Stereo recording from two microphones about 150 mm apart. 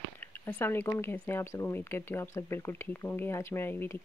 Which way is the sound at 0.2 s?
15° left (ahead or behind).